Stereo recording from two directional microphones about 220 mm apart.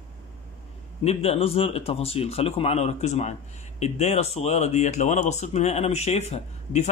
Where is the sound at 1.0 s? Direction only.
25° left (ahead or behind).